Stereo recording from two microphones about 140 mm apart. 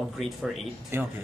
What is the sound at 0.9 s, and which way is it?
Speech, 15° right (ahead or behind).